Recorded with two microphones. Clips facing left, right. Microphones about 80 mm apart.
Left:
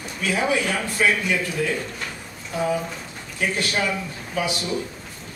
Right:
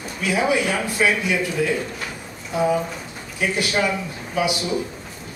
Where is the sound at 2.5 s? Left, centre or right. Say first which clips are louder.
Right 4 dB; centre.